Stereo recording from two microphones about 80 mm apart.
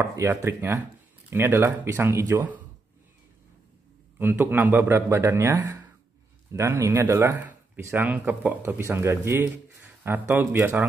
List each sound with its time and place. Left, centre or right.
0.0 s speech: right
4.2 s a man's voice: right